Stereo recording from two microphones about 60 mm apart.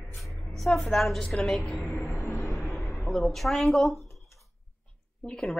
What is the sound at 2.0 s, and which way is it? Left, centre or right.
Music, left.